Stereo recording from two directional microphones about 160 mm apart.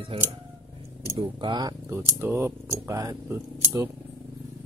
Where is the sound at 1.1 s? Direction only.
25° right (ahead or behind).